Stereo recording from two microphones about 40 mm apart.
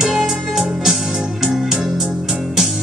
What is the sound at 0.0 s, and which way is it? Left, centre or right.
Music, centre.